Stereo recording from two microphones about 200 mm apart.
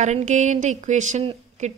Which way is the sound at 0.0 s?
35° right (ahead or behind).